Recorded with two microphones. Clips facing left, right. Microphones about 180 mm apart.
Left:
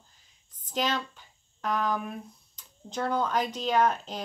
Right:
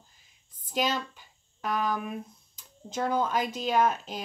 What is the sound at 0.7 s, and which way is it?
Speech, 10° right (ahead or behind).